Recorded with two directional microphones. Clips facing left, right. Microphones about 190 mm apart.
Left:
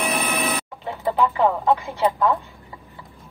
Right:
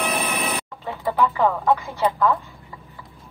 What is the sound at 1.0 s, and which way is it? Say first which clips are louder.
Speech: left 1 dB; 15° left (ahead or behind).